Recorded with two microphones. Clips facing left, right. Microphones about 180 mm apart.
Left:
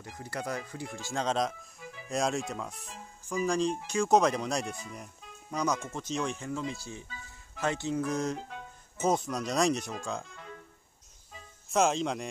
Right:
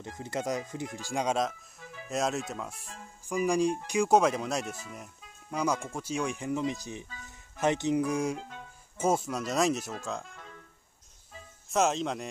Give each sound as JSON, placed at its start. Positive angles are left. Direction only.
{"t": 0.0, "sound": "speech", "side_deg": -20}
{"t": 1.4, "sound": "speech", "side_deg": 0}
{"t": 3.3, "sound": "speech", "side_deg": -10}
{"t": 11.7, "sound": "speech", "side_deg": 0}